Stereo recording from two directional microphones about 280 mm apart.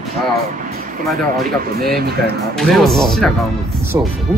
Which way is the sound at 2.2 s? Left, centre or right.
Centre.